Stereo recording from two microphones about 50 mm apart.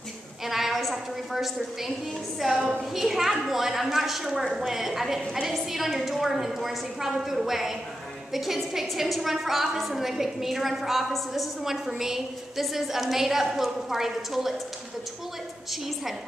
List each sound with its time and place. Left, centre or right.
0.5 s a sound: centre
0.9 s a woman's voice: centre
15.7 s a woman's voice: centre